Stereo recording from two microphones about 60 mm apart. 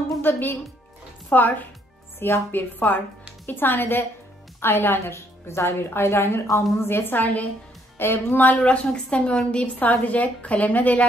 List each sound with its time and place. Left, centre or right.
0.2 s a woman's voice: left
2.1 s a woman's voice: left
2.8 s a woman's voice: left